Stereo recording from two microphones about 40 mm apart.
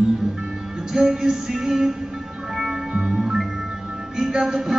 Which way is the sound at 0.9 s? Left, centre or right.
Centre.